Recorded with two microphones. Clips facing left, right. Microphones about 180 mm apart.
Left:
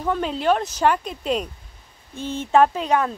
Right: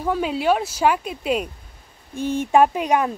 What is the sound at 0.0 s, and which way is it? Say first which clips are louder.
Speech: right 1 dB; 5° right (ahead or behind).